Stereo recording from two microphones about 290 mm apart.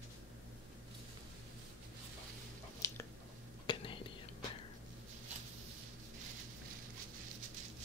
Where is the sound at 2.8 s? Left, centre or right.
Centre.